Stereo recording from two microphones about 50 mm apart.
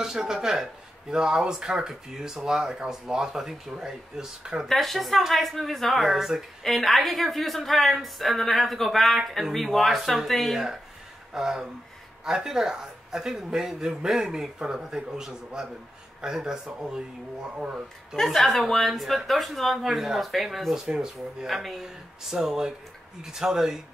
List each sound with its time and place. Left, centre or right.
0.0 s speech: centre
4.6 s speech: centre
6.6 s speech: centre
11.3 s speech: centre
18.1 s speech: centre